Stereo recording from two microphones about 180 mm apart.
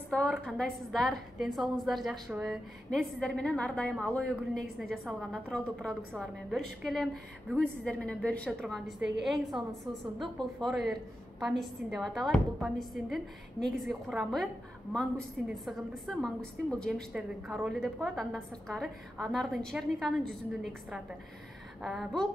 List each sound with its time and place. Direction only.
0.1 s a woman's voice: 5° left (ahead or behind)
4.4 s a woman's voice: 5° right (ahead or behind)